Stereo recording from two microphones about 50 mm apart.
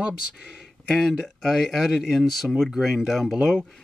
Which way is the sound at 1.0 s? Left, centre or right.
Centre.